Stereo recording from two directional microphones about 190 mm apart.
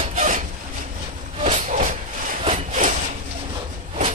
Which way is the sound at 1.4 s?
35° right (ahead or behind).